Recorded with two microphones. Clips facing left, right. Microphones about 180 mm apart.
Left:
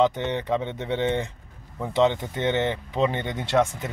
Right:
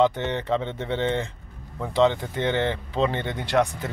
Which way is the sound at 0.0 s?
15° left (ahead or behind).